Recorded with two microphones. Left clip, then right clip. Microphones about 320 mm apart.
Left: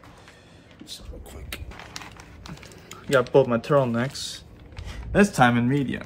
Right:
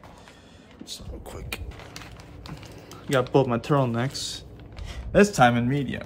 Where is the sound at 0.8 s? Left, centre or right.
Centre.